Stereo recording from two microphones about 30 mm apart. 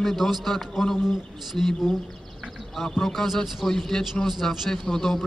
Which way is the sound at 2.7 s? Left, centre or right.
Centre.